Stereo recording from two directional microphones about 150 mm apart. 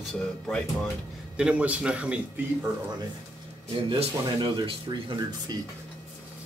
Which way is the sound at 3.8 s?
35° right (ahead or behind).